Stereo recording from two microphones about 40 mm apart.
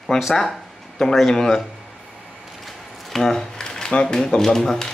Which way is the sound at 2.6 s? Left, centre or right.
Centre.